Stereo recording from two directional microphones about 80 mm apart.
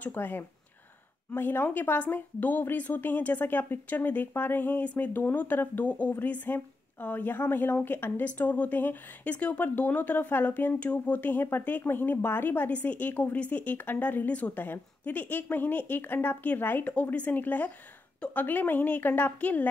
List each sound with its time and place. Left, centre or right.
0.0 s speech: left